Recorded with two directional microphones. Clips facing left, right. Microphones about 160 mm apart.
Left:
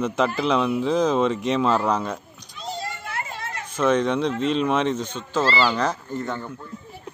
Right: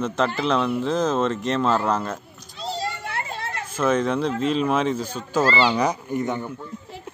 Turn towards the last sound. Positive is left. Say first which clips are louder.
# right 4 dB
turn(degrees=-15)  # may be behind; listen again after turning